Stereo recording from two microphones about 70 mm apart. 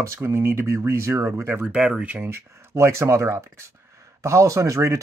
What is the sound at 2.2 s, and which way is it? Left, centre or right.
Speech, right.